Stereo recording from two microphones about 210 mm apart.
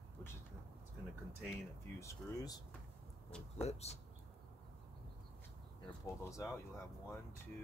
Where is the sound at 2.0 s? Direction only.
15° left (ahead or behind).